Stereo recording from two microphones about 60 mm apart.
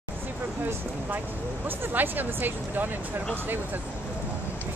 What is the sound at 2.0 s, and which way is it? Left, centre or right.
Speech, right.